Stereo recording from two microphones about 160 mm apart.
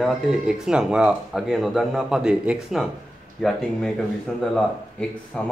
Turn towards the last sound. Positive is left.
turn(degrees=5)  # may be behind; listen again after turning